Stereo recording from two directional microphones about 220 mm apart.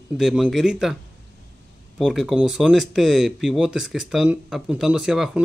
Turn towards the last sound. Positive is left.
turn(degrees=0)  # may be behind; listen again after turning